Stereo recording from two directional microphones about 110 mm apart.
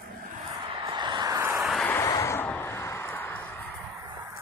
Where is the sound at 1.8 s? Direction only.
25° left (ahead or behind).